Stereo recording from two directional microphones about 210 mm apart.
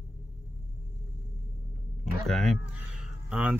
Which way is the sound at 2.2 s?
Centre (ahead or behind).